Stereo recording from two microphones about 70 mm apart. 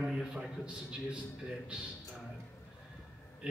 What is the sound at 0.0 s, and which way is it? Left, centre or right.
A man's voice, centre.